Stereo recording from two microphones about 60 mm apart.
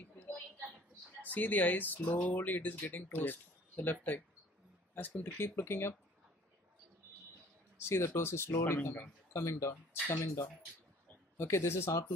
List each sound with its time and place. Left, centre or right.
0.0 s a sound: left
1.3 s speech: left
5.2 s speech: left
7.7 s speech: left